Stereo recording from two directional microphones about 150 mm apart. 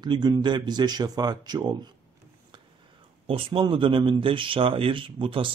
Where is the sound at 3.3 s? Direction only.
35° right (ahead or behind).